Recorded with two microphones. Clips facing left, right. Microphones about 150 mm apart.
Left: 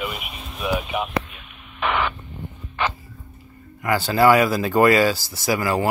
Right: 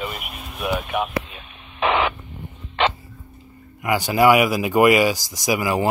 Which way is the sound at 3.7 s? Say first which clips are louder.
Even; 15° right (ahead or behind).